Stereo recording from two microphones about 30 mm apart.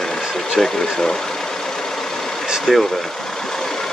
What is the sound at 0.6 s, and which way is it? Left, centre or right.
Speech, centre.